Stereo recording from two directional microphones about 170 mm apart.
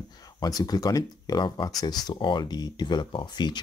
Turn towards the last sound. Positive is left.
turn(degrees=25)  # may be behind; listen again after turning